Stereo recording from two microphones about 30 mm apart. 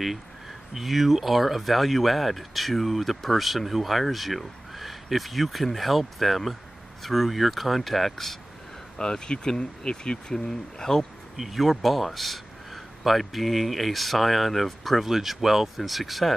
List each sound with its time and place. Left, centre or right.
0.7 s speech: centre
8.9 s speech: left
10.3 s speech: centre
11.3 s speech: centre
15.0 s speech: centre